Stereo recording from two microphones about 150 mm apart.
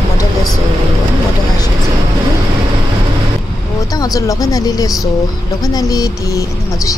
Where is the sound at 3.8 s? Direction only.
25° left (ahead or behind).